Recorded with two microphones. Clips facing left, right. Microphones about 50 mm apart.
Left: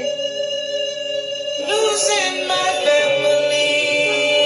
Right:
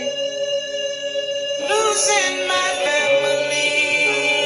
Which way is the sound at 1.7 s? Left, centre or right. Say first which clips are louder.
Left 1 dB; right.